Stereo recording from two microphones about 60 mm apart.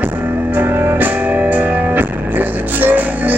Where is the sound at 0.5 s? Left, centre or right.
Right.